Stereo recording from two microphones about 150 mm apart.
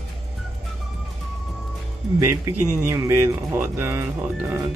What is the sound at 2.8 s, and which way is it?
Speech, 15° right (ahead or behind).